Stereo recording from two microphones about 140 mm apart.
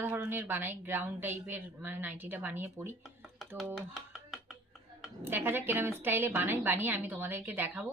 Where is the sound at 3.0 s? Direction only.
Centre (ahead or behind).